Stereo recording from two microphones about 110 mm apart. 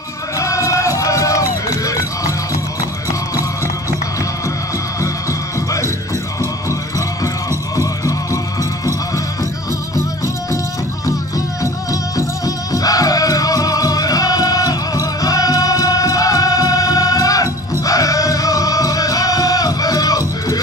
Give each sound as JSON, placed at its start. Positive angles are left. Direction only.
{"t": 0.4, "sound": "music", "side_deg": 30}
{"t": 6.4, "sound": "music", "side_deg": 25}
{"t": 11.1, "sound": "music", "side_deg": 30}